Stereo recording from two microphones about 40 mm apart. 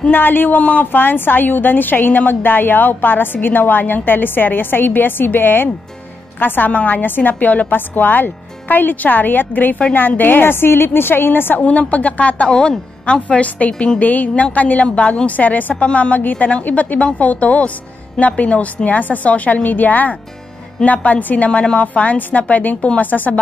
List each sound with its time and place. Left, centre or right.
0.1 s a woman's voice: left
0.9 s a woman's voice: left
10.4 s a woman's voice: left
11.6 s a woman's voice: left
14.0 s a woman's voice: left
17.0 s speech: left
21.5 s a woman's voice: left
21.8 s a woman's voice: left